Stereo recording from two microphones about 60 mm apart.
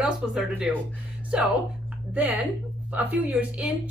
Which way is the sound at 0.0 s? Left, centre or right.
Centre.